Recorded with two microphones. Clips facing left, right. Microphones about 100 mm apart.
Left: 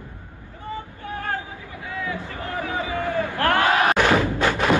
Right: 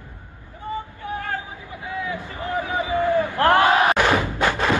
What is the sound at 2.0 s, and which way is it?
Crowd, 20° right (ahead or behind).